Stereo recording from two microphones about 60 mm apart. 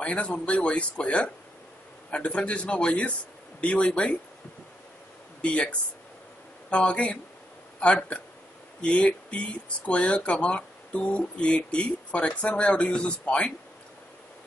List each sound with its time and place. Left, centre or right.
0.0 s speech: centre
5.4 s speech: centre